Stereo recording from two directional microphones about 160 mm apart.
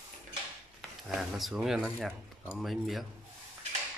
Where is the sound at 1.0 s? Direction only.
5° right (ahead or behind).